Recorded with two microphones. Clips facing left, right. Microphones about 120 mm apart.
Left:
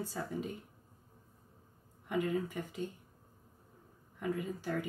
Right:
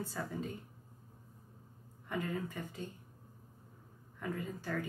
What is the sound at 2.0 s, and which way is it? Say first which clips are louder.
Speech: left 5 dB; 15° left (ahead or behind).